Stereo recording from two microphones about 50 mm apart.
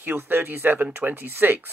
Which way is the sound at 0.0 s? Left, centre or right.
Right.